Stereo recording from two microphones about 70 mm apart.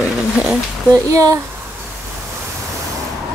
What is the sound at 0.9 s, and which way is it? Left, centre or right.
Speech, right.